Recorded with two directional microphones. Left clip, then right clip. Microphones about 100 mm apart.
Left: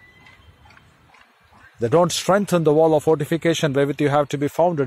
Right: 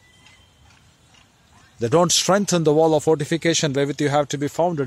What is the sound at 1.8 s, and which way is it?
Speech, 60° right (ahead or behind).